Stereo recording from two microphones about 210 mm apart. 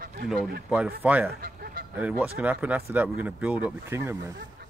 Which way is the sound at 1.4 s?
45° right (ahead or behind).